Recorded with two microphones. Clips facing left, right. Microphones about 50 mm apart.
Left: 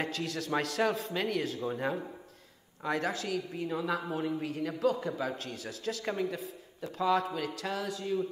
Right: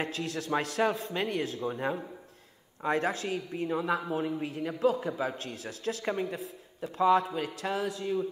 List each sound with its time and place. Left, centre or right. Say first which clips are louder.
0.2 s a man's voice: right 2 dB; centre
0.6 s a man's voice: right 1 dB; centre
0.9 s a man's voice: right 1 dB; centre
2.8 s speech: right 3 dB; right
3.5 s a man's voice: right 6 dB; centre
5.5 s a man's voice: right 2 dB; right
6.0 s a man's voice: even; centre
7.0 s a man's voice: right 4 dB; right